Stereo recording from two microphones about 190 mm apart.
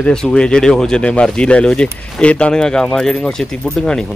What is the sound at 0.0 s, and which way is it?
Speech, 5° left (ahead or behind).